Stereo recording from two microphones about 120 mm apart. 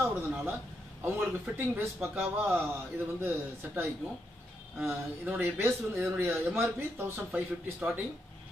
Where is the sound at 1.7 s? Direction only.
20° right (ahead or behind).